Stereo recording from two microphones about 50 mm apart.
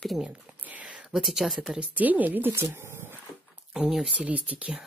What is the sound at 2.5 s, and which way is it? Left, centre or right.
Speech, right.